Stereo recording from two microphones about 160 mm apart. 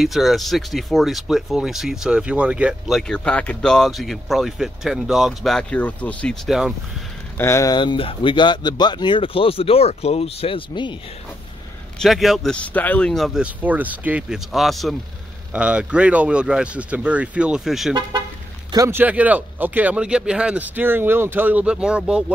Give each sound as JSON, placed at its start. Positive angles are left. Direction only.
{"t": 0.0, "sound": "speech", "side_deg": 0}
{"t": 7.3, "sound": "speech", "side_deg": 15}
{"t": 12.0, "sound": "speech", "side_deg": 0}
{"t": 18.7, "sound": "speech", "side_deg": -20}